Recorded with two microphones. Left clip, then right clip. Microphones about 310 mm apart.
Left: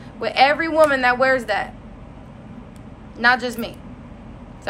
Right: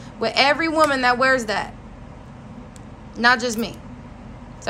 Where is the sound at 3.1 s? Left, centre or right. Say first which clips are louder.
Even; right.